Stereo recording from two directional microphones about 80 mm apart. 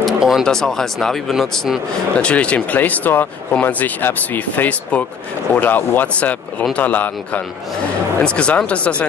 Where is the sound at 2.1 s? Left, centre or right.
Centre.